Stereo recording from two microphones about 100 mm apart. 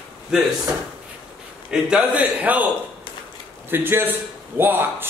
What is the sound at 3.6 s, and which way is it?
A man's voice, 20° right (ahead or behind).